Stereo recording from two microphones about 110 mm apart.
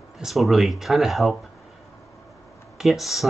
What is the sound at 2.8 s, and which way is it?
Speech, centre (ahead or behind).